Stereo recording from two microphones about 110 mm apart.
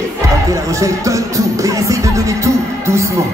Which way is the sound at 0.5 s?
30° right (ahead or behind).